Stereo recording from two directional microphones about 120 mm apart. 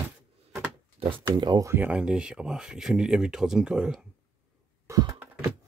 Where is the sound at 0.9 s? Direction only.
45° right (ahead or behind).